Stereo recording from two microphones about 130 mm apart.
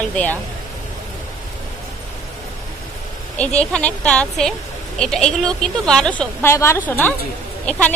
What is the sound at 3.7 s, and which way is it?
A woman's voice, 10° left (ahead or behind).